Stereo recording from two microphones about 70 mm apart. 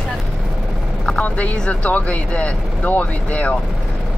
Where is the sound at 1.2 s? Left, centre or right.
Left.